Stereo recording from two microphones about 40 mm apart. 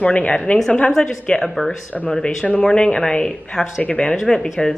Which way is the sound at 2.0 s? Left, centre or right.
Left.